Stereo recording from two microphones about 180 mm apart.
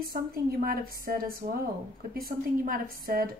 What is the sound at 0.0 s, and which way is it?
Speech, 55° right (ahead or behind).